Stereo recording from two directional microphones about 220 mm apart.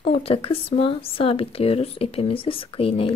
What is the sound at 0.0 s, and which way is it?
Speech, 25° left (ahead or behind).